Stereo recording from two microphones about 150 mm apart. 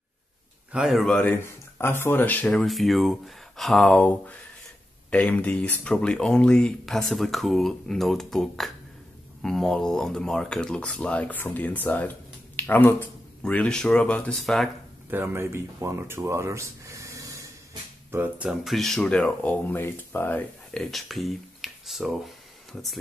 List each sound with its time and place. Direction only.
0.7 s speech: 5° right (ahead or behind)
15.0 s speech: 15° right (ahead or behind)
18.1 s speech: 10° right (ahead or behind); by 20.8 s 15° left (ahead or behind)
20.8 s speech: centre (ahead or behind)